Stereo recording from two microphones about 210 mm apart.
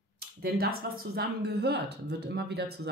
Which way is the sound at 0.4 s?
45° right (ahead or behind).